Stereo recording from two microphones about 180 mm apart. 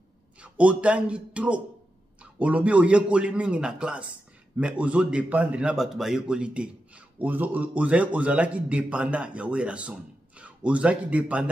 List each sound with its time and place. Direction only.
0.4 s a man's voice: 5° right (ahead or behind)